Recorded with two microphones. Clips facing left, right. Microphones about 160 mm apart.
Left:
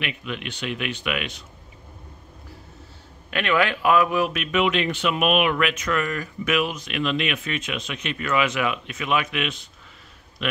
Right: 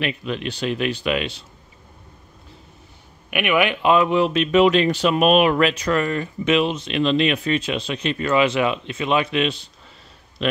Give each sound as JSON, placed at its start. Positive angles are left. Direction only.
{"t": 0.0, "sound": "speech", "side_deg": -35}
{"t": 3.3, "sound": "speech", "side_deg": -15}